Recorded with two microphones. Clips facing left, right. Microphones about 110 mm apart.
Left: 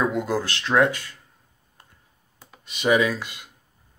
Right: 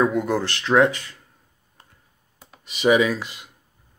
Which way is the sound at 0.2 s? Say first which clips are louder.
Right 2 dB; centre (ahead or behind).